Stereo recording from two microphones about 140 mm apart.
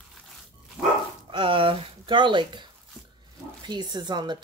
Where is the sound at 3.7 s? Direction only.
30° right (ahead or behind).